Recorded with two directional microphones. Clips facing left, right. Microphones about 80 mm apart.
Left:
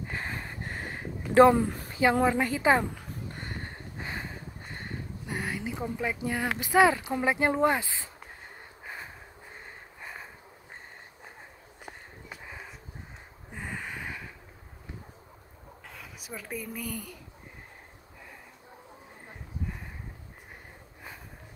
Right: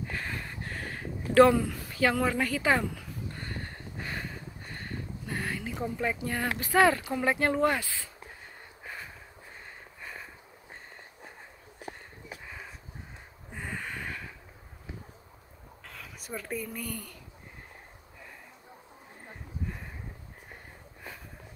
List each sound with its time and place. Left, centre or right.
0.1 s a sound: left
2.2 s speech: left
3.3 s a sound: left
5.9 s speech: centre; by 8.1 s left
8.8 s snort: centre
13.5 s gasp: centre
15.9 s speech: centre